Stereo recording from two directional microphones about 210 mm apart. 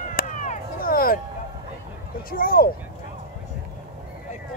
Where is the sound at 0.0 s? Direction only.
40° left (ahead or behind).